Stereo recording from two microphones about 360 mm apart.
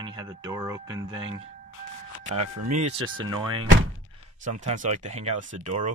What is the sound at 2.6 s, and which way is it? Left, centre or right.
Speech, right.